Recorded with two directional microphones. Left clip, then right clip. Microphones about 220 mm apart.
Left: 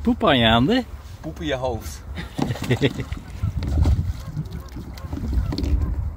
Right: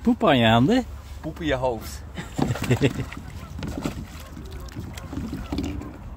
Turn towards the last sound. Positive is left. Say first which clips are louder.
# left 1 dB
turn(degrees=-5)  # may be behind; listen again after turning